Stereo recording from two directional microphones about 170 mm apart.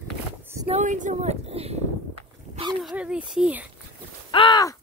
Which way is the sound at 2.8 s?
5° right (ahead or behind).